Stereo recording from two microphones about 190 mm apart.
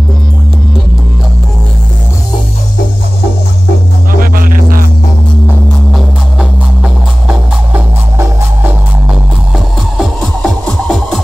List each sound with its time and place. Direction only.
4.2 s music: 50° right (ahead or behind)
5.9 s music: centre (ahead or behind)
9.9 s music: centre (ahead or behind)